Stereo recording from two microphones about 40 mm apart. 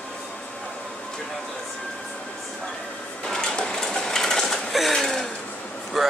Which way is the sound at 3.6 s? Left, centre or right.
Centre.